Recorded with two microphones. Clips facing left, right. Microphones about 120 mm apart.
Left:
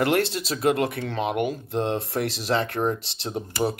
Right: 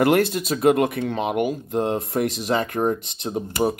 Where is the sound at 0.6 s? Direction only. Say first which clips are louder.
Right 5 dB; 20° right (ahead or behind).